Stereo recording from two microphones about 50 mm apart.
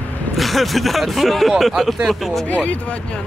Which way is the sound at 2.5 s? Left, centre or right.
Left.